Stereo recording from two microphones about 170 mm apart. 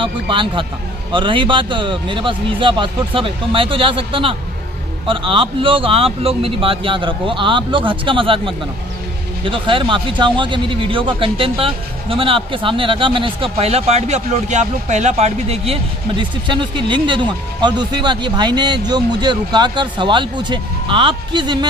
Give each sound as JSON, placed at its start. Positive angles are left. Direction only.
{"t": 0.0, "sound": "speech", "side_deg": -30}